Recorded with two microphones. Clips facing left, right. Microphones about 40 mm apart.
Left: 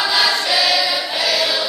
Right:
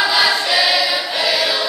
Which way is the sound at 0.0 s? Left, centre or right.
Centre.